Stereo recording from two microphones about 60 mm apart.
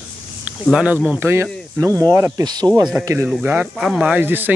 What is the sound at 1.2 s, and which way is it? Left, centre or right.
Speech, right.